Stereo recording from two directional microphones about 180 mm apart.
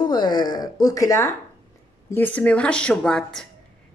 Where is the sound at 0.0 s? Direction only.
25° left (ahead or behind).